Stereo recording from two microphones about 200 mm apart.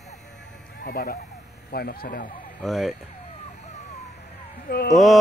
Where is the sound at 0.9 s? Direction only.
50° left (ahead or behind).